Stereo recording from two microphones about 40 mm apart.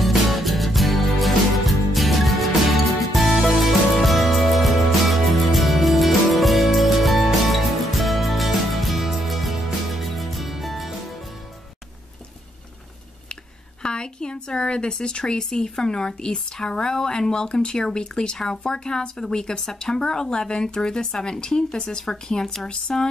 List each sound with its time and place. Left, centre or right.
0.0 s music: centre
13.8 s speech: left